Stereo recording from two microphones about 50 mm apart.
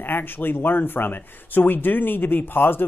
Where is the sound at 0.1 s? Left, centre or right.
Left.